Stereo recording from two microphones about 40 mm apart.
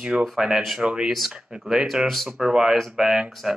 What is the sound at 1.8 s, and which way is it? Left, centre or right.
Speech, centre.